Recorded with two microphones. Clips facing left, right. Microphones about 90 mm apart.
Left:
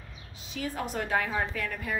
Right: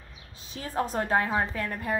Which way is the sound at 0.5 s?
35° right (ahead or behind).